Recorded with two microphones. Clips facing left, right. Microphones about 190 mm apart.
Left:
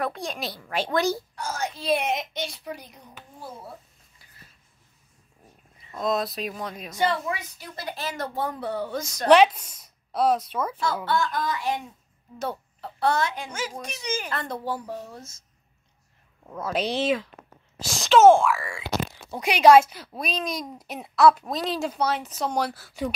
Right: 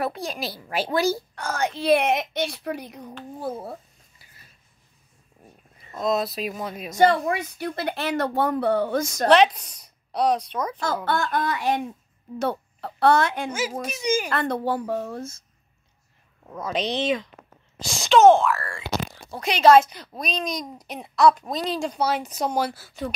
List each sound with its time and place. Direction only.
0.0 s speech: 5° right (ahead or behind)
0.6 s a child's voice: 15° right (ahead or behind)
1.3 s speech: 60° right (ahead or behind)
5.9 s speech: centre (ahead or behind)
7.0 s speech: 50° right (ahead or behind)
9.3 s a woman's voice: 10° left (ahead or behind)
11.1 s speech: 60° right (ahead or behind)
13.5 s a child's voice: 10° right (ahead or behind)
14.3 s speech: 65° right (ahead or behind)
16.4 s speech: 5° left (ahead or behind)
22.0 s a child's voice: 15° right (ahead or behind)
22.6 s speech: centre (ahead or behind)